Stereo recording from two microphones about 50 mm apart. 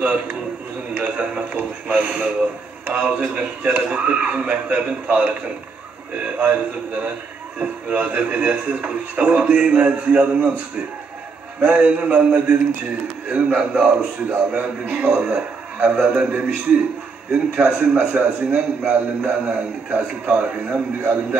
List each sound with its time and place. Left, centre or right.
0.0 s a man's voice: right
11.6 s a man's voice: right
20.7 s a man's voice: right